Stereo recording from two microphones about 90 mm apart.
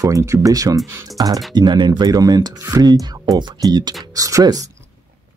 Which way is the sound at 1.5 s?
55° right (ahead or behind).